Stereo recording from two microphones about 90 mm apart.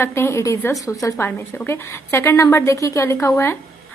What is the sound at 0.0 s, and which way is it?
A woman's voice, 30° left (ahead or behind).